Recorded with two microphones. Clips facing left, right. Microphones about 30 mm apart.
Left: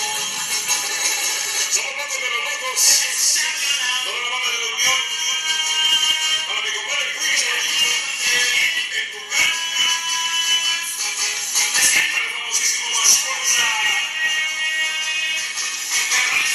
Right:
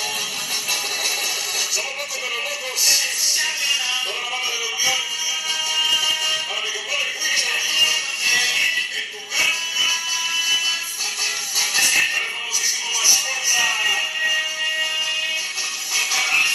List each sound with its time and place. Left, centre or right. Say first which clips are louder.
5.5 s music: left 1 dB; centre
7.7 s music: right 1 dB; centre
11.9 s music: left 1 dB; centre
13.0 s music: right 1 dB; centre
13.7 s music: left 1 dB; centre
16.3 s music: right 1 dB; centre